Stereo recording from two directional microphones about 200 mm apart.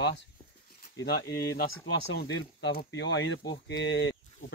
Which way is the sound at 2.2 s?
55° left (ahead or behind).